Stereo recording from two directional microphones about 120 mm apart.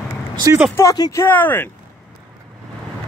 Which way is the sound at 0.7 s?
30° left (ahead or behind).